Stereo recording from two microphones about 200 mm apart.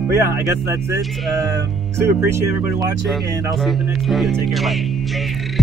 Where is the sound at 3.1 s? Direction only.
Centre (ahead or behind).